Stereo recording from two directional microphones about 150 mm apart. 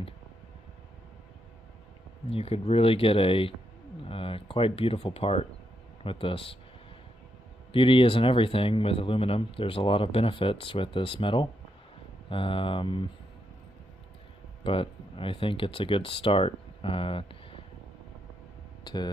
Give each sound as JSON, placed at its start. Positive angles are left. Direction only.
{"t": 2.2, "sound": "speech", "side_deg": 40}
{"t": 7.7, "sound": "speech", "side_deg": 35}
{"t": 14.6, "sound": "speech", "side_deg": 35}